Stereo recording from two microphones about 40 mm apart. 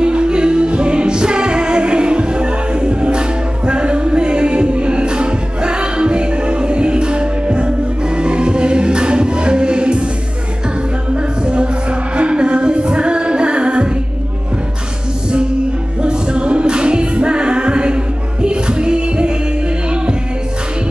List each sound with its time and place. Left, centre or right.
0.0 s music: right
11.1 s music: right
16.0 s music: right